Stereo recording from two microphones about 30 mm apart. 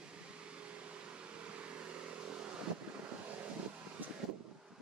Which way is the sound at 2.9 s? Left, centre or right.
Right.